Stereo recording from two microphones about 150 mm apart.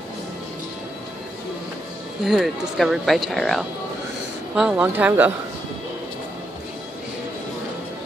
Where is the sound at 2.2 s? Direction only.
Centre (ahead or behind).